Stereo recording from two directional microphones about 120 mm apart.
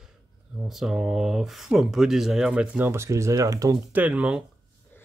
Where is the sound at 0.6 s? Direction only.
5° right (ahead or behind).